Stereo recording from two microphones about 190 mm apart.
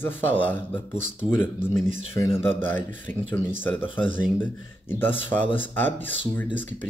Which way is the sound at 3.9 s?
30° left (ahead or behind).